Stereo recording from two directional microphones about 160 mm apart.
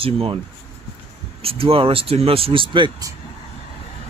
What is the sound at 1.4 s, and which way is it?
Speech, 35° right (ahead or behind).